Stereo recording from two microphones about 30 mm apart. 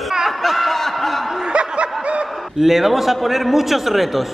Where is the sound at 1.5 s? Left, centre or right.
Right.